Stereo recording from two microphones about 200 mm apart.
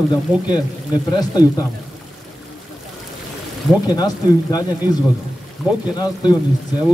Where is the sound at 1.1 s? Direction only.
20° left (ahead or behind).